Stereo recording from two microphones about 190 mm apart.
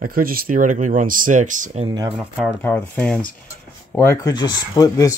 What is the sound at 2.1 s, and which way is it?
Speech, centre (ahead or behind).